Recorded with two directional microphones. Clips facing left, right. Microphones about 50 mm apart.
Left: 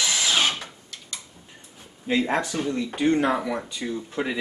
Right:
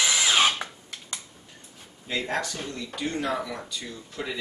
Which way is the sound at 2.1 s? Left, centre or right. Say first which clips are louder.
Left 5 dB; left.